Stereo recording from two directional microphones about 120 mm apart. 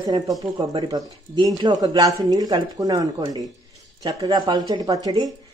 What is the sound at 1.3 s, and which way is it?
Speech, 35° right (ahead or behind).